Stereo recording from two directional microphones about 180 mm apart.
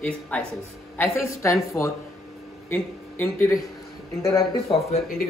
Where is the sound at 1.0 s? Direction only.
15° left (ahead or behind).